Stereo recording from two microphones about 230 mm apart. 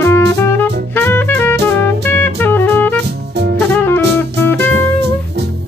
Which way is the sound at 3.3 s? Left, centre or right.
Right.